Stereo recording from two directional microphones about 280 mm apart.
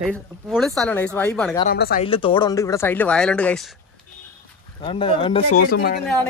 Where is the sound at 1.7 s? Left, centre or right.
Left.